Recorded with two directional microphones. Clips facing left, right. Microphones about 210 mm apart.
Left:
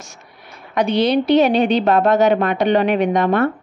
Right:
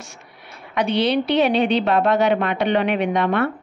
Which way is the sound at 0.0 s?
40° left (ahead or behind).